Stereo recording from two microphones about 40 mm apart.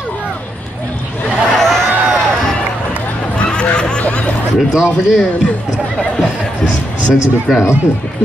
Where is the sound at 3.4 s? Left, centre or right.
Left.